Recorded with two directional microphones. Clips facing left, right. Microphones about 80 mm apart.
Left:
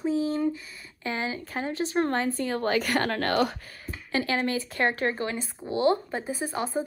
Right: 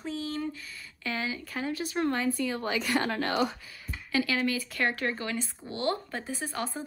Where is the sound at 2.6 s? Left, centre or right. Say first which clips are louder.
Left 4 dB; left.